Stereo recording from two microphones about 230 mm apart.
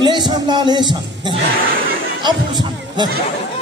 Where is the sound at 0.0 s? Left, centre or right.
Centre.